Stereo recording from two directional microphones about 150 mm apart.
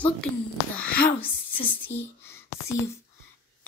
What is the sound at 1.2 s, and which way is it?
A woman's voice, 10° left (ahead or behind).